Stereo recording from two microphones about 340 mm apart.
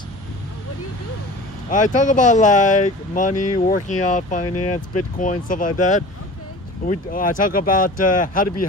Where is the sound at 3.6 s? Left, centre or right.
Left.